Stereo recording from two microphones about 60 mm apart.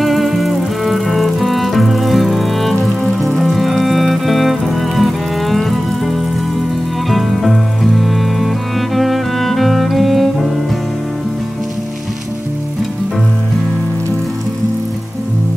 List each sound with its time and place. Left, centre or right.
0.0 s music: centre